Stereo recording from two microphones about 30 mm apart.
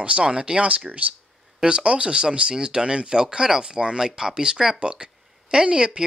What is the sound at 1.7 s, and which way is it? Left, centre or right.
Speech, right.